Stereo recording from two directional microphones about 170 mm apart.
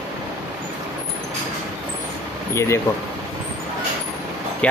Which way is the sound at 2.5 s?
15° left (ahead or behind).